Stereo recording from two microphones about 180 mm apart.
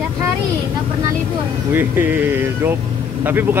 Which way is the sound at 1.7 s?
10° right (ahead or behind).